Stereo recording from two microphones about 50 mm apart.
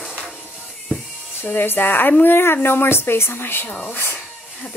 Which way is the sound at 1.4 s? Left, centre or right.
Left.